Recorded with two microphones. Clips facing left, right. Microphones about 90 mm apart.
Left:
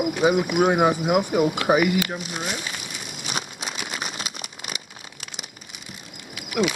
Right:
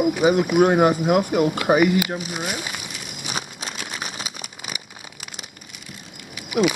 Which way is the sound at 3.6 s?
5° left (ahead or behind).